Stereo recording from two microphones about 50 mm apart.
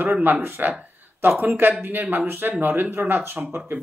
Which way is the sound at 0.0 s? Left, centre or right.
Right.